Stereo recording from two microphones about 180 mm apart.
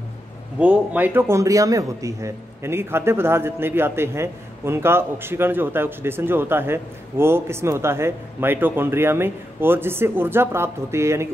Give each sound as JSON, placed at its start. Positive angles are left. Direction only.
{"t": 0.6, "sound": "a man's voice", "side_deg": -10}